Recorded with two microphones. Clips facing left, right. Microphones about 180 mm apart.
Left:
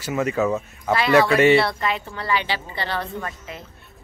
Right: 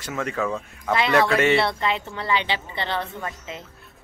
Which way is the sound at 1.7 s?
20° right (ahead or behind).